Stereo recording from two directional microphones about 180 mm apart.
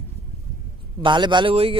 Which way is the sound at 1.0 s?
25° right (ahead or behind).